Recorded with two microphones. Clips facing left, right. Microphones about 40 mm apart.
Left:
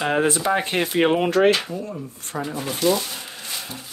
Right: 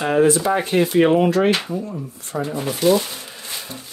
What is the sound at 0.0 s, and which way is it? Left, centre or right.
Speech, left.